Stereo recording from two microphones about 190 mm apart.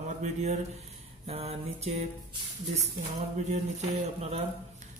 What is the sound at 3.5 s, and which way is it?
Speech, 35° right (ahead or behind).